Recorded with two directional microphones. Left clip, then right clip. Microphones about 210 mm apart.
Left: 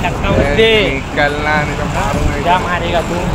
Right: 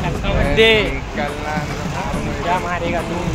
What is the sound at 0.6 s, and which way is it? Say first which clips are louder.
Speech: left 1 dB; 35° right (ahead or behind).